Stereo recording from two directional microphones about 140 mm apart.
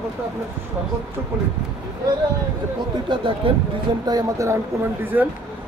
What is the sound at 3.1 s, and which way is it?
Speech, 40° right (ahead or behind).